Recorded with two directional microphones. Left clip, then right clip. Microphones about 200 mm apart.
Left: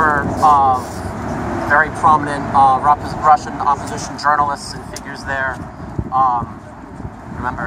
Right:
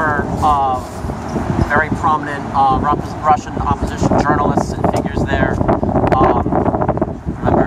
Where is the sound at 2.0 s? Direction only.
Centre (ahead or behind).